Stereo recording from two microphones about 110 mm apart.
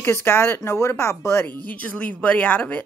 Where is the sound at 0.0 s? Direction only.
20° left (ahead or behind).